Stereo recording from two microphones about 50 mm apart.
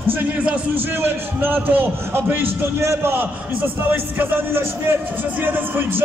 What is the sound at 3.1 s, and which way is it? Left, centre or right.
A man's voice, right.